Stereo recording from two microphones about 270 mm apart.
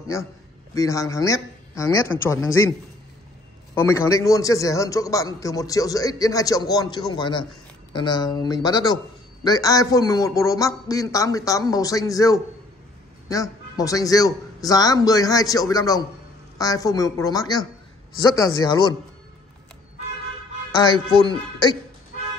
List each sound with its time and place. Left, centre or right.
0.7 s a man's voice: centre
3.7 s a man's voice: centre
20.7 s a man's voice: centre